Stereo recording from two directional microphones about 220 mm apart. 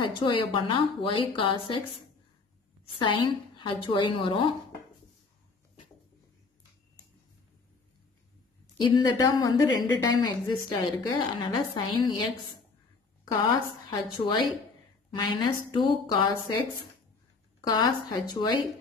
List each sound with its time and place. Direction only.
0.0 s a woman's voice: 20° left (ahead or behind)
3.0 s a woman's voice: 20° left (ahead or behind)
9.2 s a woman's voice: 20° left (ahead or behind)
13.3 s a woman's voice: 20° left (ahead or behind)
17.6 s a woman's voice: 20° left (ahead or behind)